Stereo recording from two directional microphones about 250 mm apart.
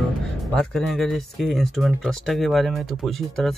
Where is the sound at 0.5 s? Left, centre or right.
Centre.